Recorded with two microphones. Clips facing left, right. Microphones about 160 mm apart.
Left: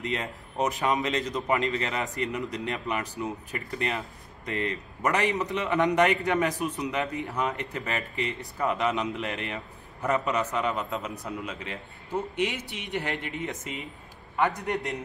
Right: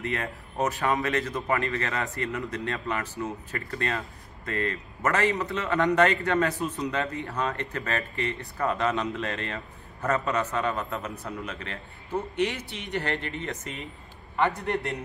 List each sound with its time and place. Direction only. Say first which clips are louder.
0.0 s a man's voice: even; 20° left (ahead or behind)